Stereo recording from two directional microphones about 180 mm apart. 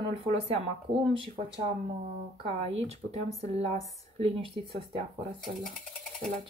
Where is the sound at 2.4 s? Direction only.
35° right (ahead or behind).